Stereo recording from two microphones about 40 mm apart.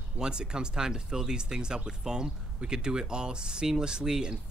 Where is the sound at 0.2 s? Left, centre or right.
Right.